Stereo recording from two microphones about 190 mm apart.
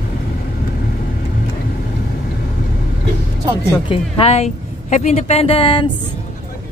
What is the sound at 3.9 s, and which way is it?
Speech, 30° left (ahead or behind).